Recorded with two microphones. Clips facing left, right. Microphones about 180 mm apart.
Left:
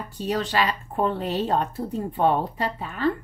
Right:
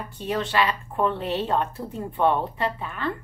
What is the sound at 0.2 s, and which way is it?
A woman's voice, 40° left (ahead or behind).